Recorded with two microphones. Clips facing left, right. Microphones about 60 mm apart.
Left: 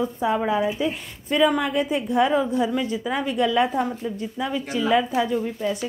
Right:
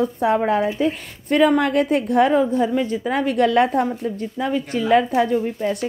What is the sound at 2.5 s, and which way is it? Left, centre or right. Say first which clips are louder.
Speech: right 3 dB; right.